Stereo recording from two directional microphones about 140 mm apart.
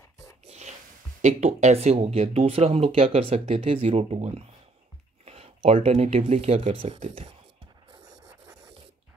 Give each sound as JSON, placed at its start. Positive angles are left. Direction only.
{"t": 0.5, "sound": "dog", "side_deg": -55}
{"t": 1.2, "sound": "speech", "side_deg": -55}
{"t": 7.9, "sound": "a sound", "side_deg": -25}